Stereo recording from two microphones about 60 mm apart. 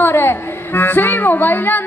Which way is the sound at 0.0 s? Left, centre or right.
Left.